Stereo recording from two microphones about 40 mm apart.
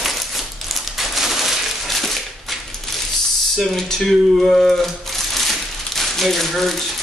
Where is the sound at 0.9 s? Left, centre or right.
Centre.